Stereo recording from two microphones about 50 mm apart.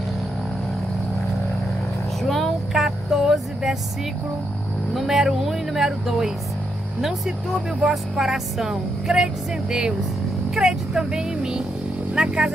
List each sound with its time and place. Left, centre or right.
2.2 s vehicle: centre
4.9 s speech: centre